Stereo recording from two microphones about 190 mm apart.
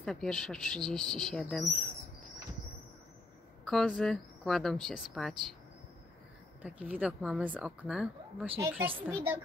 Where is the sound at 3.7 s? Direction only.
Centre (ahead or behind).